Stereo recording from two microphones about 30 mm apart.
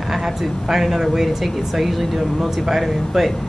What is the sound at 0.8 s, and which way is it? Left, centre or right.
Speech, centre.